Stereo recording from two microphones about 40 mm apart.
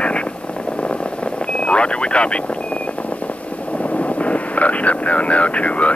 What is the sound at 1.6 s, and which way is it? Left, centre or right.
Speech, left.